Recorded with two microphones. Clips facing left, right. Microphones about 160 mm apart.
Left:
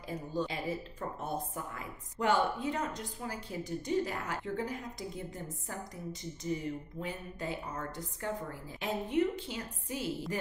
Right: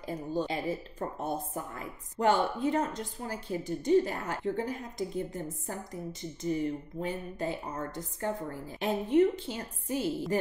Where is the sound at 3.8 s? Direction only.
35° right (ahead or behind).